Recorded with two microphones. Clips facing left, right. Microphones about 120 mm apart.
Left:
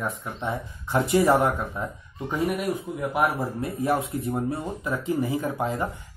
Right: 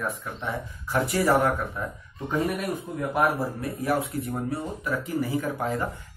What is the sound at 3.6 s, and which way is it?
Speech, 25° left (ahead or behind).